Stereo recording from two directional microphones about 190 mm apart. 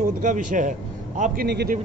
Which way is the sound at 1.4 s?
55° right (ahead or behind).